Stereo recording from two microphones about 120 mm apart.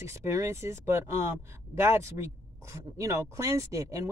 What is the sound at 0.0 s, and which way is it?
A woman's voice, 25° right (ahead or behind).